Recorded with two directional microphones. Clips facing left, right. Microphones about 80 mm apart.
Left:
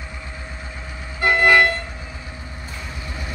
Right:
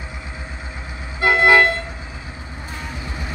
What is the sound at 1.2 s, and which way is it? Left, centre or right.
Vehicle, right.